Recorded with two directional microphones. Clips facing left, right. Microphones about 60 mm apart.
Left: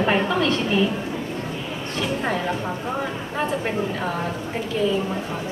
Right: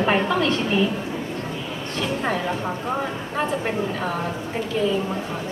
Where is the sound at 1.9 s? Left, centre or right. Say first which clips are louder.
Even; centre.